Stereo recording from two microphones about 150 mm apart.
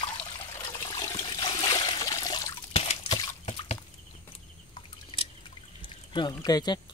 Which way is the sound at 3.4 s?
45° left (ahead or behind).